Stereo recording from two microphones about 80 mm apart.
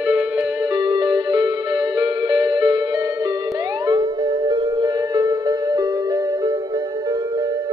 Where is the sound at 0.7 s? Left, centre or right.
Right.